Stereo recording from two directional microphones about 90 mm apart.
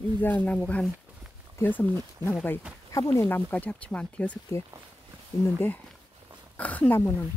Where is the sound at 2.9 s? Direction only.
30° left (ahead or behind).